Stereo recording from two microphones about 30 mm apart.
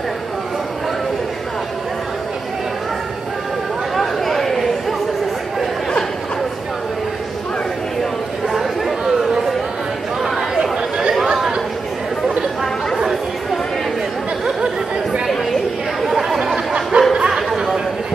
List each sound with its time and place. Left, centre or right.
3.9 s a sound: centre
10.2 s chatter: centre
10.6 s chatter: right
16.1 s chatter: centre
16.9 s a sound: right
17.3 s chatter: centre